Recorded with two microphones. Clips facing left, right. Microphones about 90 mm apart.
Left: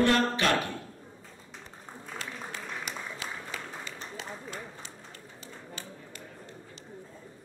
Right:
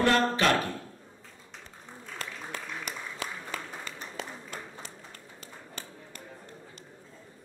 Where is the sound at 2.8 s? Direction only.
50° right (ahead or behind).